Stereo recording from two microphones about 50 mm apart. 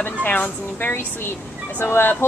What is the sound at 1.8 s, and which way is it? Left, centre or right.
Speech, left.